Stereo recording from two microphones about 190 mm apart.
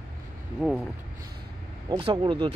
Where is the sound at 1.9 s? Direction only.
25° right (ahead or behind).